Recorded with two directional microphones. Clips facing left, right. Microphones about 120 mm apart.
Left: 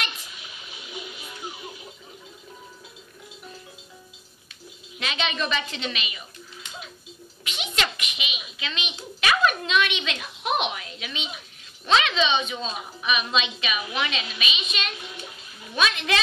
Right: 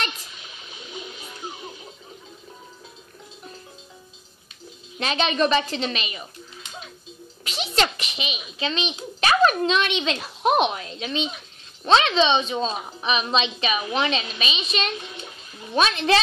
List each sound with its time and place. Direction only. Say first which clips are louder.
4.9 s a woman's voice: right 6 dB; 35° right (ahead or behind)
7.4 s a child's voice: right 6 dB; 35° right (ahead or behind)